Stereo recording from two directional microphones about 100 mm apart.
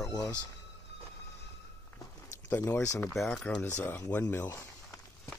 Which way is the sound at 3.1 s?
5° left (ahead or behind).